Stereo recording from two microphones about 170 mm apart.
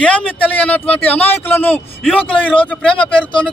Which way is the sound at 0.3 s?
10° left (ahead or behind).